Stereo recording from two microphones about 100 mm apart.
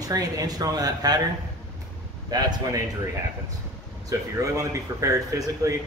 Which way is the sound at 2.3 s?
45° right (ahead or behind).